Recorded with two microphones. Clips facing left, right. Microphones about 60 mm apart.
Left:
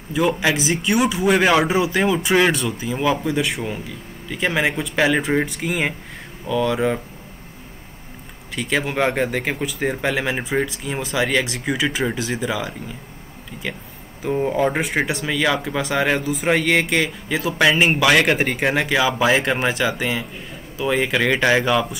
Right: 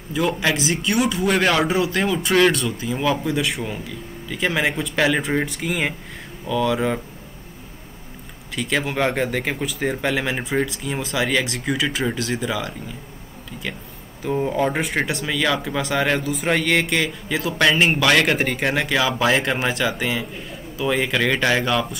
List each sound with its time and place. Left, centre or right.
0.1 s a man's voice: centre
8.5 s speech: centre
14.2 s a man's voice: centre